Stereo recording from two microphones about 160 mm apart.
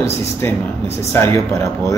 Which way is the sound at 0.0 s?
15° left (ahead or behind).